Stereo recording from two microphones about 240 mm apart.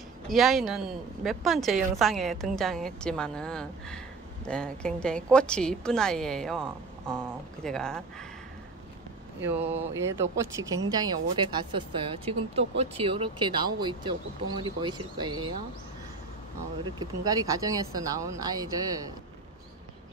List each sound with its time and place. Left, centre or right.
0.3 s a woman's voice: centre
9.4 s a woman's voice: centre
16.8 s speech: centre